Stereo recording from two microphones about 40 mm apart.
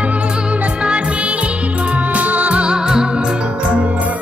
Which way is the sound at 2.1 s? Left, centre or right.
Right.